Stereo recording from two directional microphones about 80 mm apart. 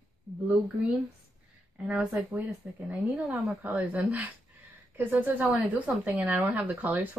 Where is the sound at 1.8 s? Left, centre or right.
Centre.